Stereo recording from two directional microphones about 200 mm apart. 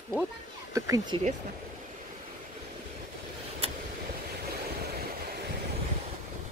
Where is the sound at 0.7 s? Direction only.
15° right (ahead or behind).